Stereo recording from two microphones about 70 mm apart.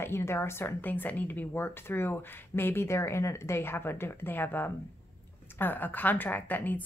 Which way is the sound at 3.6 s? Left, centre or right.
Left.